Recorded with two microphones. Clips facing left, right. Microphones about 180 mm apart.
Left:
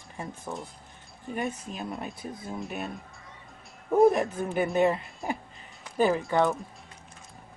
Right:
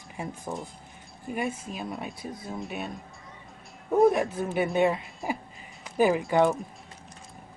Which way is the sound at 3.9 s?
Centre (ahead or behind).